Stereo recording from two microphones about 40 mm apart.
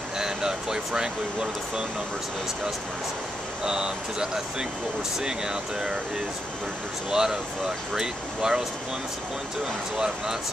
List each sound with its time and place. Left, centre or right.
0.2 s speech: centre
3.6 s speech: centre
7.1 s speech: centre
9.9 s speech: centre